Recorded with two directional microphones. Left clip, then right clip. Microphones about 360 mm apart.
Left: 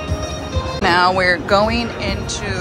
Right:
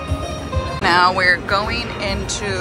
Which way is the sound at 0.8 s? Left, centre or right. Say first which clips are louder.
Even; centre.